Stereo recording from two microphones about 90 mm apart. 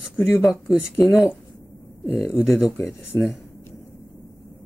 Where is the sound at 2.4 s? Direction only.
5° right (ahead or behind).